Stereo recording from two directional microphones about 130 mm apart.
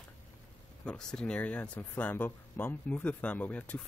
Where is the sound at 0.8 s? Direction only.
5° left (ahead or behind).